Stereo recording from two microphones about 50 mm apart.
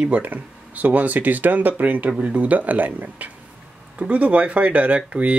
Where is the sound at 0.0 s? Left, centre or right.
Right.